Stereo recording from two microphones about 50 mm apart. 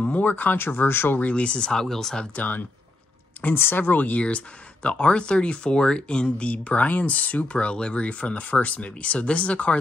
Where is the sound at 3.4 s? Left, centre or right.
Left.